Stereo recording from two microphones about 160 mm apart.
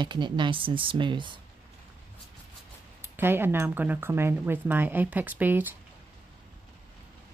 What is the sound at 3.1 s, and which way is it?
Speech, 15° right (ahead or behind).